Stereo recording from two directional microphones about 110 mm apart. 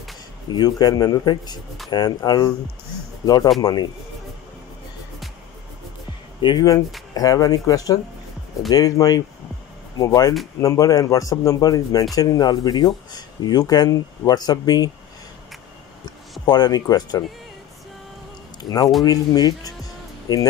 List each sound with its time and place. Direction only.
0.5 s speech: 40° left (ahead or behind)
3.6 s speech: 40° left (ahead or behind)
6.4 s speech: 35° left (ahead or behind)
16.4 s speech: 40° left (ahead or behind)
18.6 s a man's voice: 35° left (ahead or behind)